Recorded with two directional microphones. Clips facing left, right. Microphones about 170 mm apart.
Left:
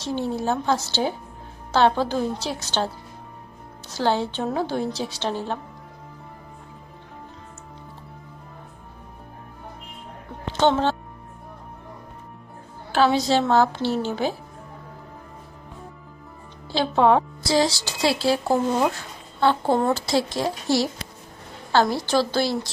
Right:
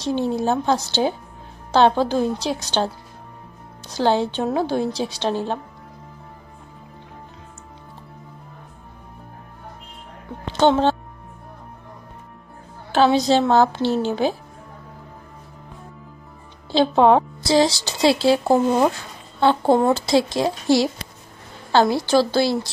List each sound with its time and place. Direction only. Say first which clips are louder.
0.0 s a woman's voice: right 4 dB; 15° right (ahead or behind)
3.9 s a woman's voice: right 4 dB; 15° right (ahead or behind)
10.6 s speech: right 3 dB; 15° right (ahead or behind)
12.9 s a woman's voice: right 3 dB; 20° right (ahead or behind)
16.7 s a woman's voice: right 4 dB; 20° right (ahead or behind)
19.4 s a woman's voice: right 4 dB; 20° right (ahead or behind)